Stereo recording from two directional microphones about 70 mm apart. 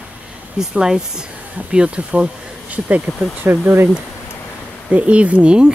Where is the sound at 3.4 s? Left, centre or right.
Right.